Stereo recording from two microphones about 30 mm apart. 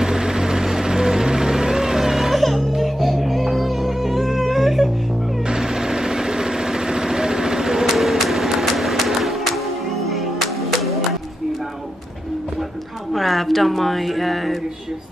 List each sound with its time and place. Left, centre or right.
0.0 s vehicle: right
2.3 s music: centre
4.5 s a sound: centre
5.5 s sewing machine: right
7.9 s vehicle: centre
8.6 s music: centre
10.6 s music: centre
13.1 s a sound: centre